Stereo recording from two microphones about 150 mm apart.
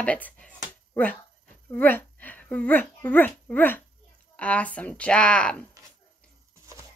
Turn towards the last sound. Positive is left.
turn(degrees=10)  # may be behind; listen again after turning